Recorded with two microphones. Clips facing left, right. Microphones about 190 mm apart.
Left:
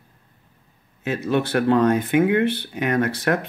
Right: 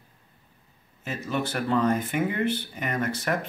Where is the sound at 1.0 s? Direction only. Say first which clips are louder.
Left 7 dB; 70° left (ahead or behind).